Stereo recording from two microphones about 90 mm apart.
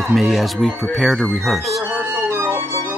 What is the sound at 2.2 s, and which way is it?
Music, 30° right (ahead or behind).